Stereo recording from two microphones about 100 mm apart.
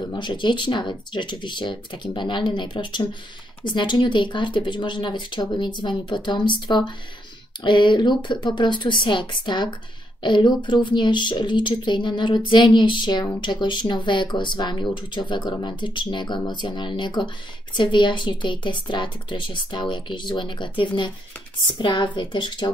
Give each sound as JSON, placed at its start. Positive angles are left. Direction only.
{"t": 0.1, "sound": "a woman's voice", "side_deg": 50}